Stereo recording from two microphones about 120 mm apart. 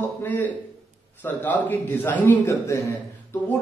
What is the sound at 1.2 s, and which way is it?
A man's voice, 15° left (ahead or behind).